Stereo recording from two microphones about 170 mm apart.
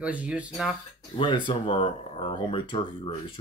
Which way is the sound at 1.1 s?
25° left (ahead or behind).